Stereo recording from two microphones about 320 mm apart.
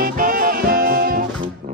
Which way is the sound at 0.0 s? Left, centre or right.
Right.